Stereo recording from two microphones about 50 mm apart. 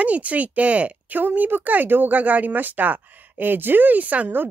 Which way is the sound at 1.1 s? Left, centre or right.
Right.